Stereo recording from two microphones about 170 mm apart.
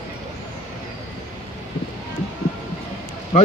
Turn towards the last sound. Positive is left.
turn(degrees=45)  # may be behind; listen again after turning